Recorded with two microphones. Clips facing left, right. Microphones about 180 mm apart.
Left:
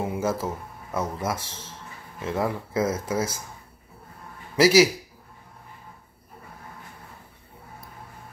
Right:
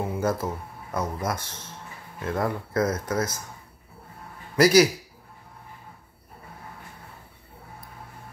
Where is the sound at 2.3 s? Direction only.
5° left (ahead or behind).